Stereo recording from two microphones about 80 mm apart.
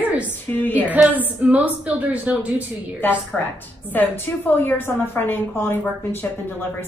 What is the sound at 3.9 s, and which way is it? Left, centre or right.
A woman's voice, left.